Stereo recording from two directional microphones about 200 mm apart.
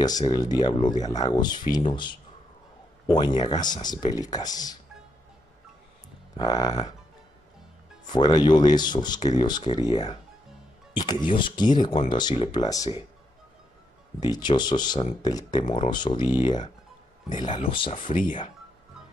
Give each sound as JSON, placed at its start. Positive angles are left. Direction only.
{"t": 0.0, "sound": "speech", "side_deg": 20}
{"t": 6.3, "sound": "speech", "side_deg": 20}
{"t": 8.1, "sound": "speech", "side_deg": 20}
{"t": 14.2, "sound": "speech", "side_deg": 20}
{"t": 17.5, "sound": "speech", "side_deg": 25}